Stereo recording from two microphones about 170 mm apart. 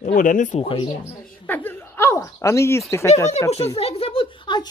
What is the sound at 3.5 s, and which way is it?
Speech, 35° left (ahead or behind).